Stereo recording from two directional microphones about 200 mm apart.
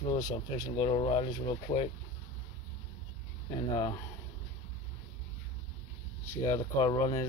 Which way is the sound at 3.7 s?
20° left (ahead or behind).